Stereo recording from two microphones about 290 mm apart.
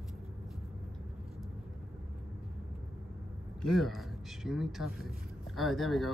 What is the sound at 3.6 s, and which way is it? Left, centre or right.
Speech, centre.